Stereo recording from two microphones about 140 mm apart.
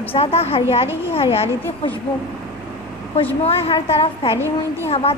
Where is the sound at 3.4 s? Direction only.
45° left (ahead or behind).